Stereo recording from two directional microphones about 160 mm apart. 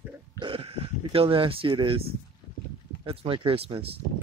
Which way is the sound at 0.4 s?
35° right (ahead or behind).